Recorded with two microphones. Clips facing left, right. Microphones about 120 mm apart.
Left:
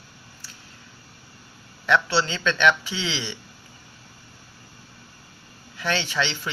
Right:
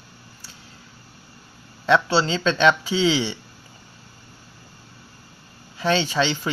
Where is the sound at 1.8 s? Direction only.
35° right (ahead or behind).